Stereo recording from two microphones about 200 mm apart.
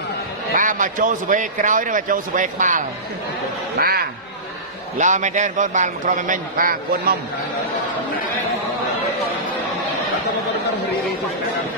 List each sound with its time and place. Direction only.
0.6 s a man's voice: 40° right (ahead or behind)
4.9 s a man's voice: 35° right (ahead or behind)